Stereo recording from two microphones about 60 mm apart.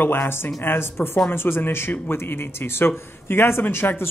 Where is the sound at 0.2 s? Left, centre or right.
Left.